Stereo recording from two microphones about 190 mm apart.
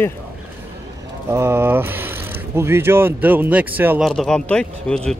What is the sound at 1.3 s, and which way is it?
Speech, 15° right (ahead or behind).